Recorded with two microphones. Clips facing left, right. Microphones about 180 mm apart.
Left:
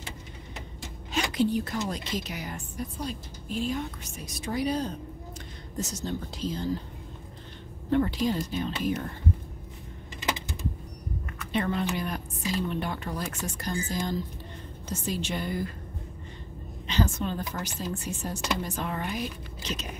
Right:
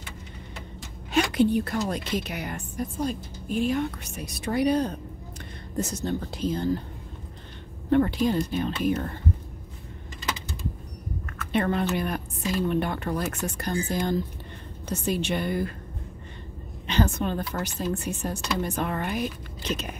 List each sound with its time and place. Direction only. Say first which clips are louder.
1.1 s a woman's voice: right 5 dB; 60° right (ahead or behind)
7.9 s a woman's voice: right 4 dB; 55° right (ahead or behind)
11.5 s a woman's voice: right 3 dB; 55° right (ahead or behind)
16.8 s a woman's voice: right 3 dB; 60° right (ahead or behind)